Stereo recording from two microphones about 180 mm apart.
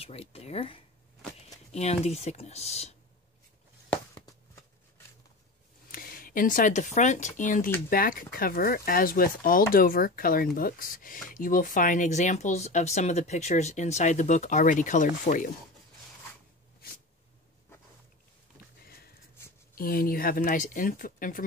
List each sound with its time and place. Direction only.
0.0 s speech: 35° left (ahead or behind)
4.1 s a sound: 20° left (ahead or behind)
5.9 s speech: 50° left (ahead or behind)
19.7 s speech: 55° left (ahead or behind)